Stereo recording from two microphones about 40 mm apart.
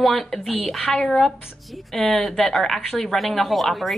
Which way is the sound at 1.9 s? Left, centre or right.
Centre.